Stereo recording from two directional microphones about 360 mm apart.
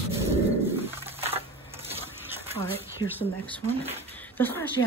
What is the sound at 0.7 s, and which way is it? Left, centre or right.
Crushing, centre.